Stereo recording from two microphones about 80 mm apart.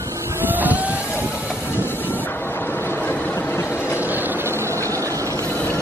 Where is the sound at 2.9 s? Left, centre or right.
Left.